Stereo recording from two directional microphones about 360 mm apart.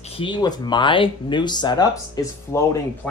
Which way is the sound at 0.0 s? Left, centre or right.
Centre.